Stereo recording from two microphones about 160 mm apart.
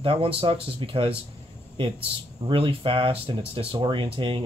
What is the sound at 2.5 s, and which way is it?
Speech, 35° right (ahead or behind).